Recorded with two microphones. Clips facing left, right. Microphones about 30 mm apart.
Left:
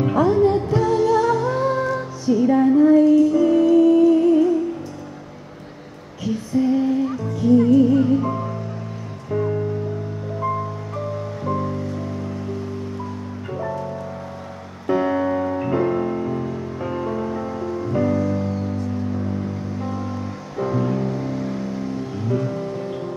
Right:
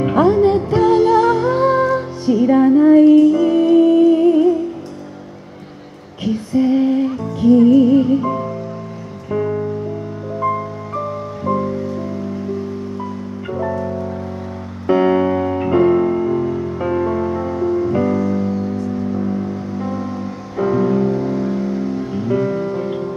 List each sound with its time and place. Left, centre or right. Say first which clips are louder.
0.0 s music: right 4 dB; right
6.2 s music: right 4 dB; right
13.6 s music: right 6 dB; right
17.6 s music: right 6 dB; right
20.5 s music: right 6 dB; centre
22.4 s music: right 6 dB; right